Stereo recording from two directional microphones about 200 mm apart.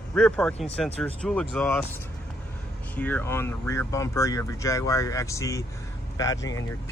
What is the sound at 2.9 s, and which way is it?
Speech, 10° left (ahead or behind).